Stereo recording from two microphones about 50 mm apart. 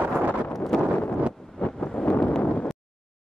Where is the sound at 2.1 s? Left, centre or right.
Left.